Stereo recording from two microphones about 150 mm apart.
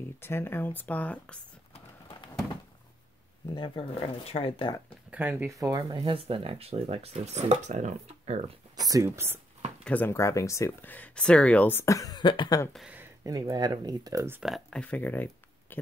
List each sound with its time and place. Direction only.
0.2 s speech: 15° left (ahead or behind)
1.7 s a sound: 35° left (ahead or behind)
3.5 s speech: 35° left (ahead or behind)
5.1 s speech: 10° right (ahead or behind)
6.1 s speech: 40° right (ahead or behind)
8.7 s speech: 25° right (ahead or behind)
9.8 s speech: 10° left (ahead or behind); by 12.6 s 30° left (ahead or behind)
12.7 s speech: 10° right (ahead or behind)
13.2 s speech: 25° right (ahead or behind)
14.4 s speech: 5° left (ahead or behind)
15.7 s a sound: 15° left (ahead or behind)